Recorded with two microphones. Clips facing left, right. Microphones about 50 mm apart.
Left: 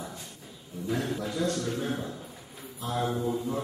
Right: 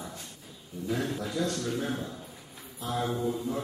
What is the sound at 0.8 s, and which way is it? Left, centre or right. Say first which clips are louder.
Speech: left 1 dB; centre.